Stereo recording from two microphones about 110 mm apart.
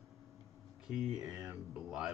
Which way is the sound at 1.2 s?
30° right (ahead or behind).